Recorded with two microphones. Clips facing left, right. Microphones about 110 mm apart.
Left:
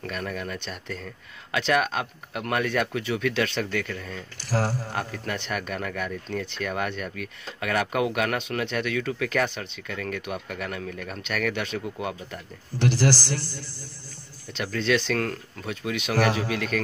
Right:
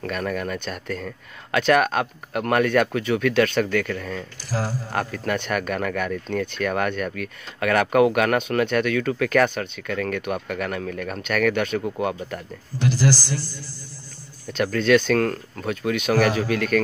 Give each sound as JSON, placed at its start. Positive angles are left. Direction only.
{"t": 0.0, "sound": "speech", "side_deg": -55}
{"t": 4.5, "sound": "speech", "side_deg": 55}
{"t": 4.9, "sound": "speech", "side_deg": -55}
{"t": 12.7, "sound": "speech", "side_deg": 60}
{"t": 13.2, "sound": "speech", "side_deg": -10}
{"t": 14.5, "sound": "speech", "side_deg": -50}